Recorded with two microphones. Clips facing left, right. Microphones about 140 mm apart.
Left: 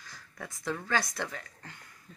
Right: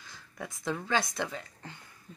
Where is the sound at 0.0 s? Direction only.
25° right (ahead or behind).